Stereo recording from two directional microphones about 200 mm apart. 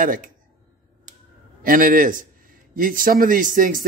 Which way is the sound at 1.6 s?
45° right (ahead or behind).